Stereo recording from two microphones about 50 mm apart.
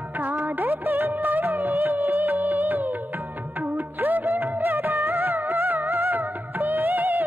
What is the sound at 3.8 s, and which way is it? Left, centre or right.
Music, right.